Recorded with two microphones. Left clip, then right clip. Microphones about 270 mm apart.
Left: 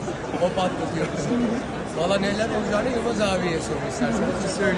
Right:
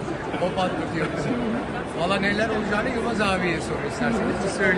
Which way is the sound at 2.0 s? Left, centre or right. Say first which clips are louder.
Even; centre.